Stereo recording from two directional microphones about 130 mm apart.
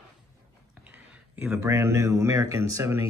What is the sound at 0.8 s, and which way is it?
Speech, 15° right (ahead or behind).